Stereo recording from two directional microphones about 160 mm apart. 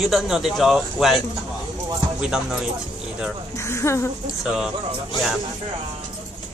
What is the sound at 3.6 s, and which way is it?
Speech, 15° left (ahead or behind).